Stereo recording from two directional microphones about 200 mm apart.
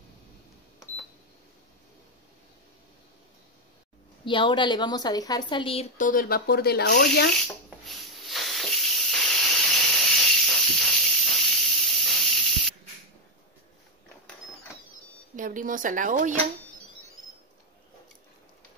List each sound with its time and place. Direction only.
4.2 s a woman's voice: 25° left (ahead or behind)
5.9 s speech: 45° left (ahead or behind)
7.3 s snake: centre (ahead or behind)
15.3 s speech: 40° right (ahead or behind)